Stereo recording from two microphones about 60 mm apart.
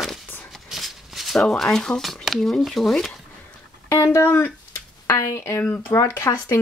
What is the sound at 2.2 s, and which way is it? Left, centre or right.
Speech, centre.